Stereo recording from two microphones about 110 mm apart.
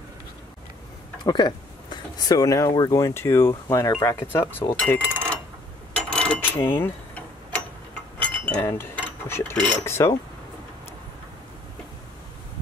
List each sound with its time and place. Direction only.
1.2 s speech: 40° left (ahead or behind); by 5.4 s 15° left (ahead or behind)
6.0 s a sound: 10° left (ahead or behind)
8.2 s chink: 15° left (ahead or behind)
9.6 s cutlery: 10° left (ahead or behind)
9.8 s speech: 25° left (ahead or behind)